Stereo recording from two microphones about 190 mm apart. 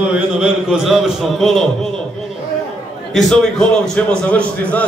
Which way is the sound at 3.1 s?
Centre (ahead or behind).